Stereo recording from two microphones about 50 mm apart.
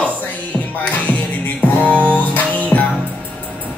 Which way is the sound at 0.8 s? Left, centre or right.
Left.